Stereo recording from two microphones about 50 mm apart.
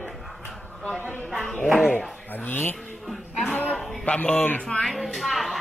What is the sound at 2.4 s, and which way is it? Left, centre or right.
Speech, left.